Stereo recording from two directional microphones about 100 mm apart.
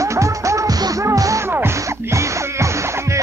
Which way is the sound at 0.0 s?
30° right (ahead or behind).